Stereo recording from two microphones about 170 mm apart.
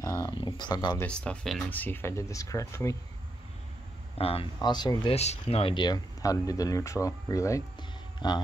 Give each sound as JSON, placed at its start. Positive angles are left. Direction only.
{"t": 0.0, "sound": "speech", "side_deg": 20}
{"t": 0.9, "sound": "speech", "side_deg": 5}
{"t": 4.2, "sound": "speech", "side_deg": 35}
{"t": 5.1, "sound": "speech", "side_deg": 40}